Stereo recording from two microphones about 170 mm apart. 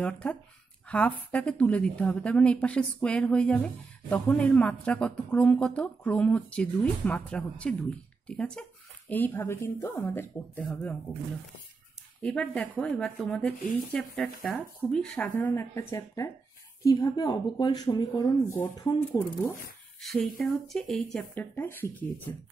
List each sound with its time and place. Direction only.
0.0 s a woman's voice: 5° left (ahead or behind)
12.2 s a woman's voice: 5° left (ahead or behind)
20.0 s speech: centre (ahead or behind)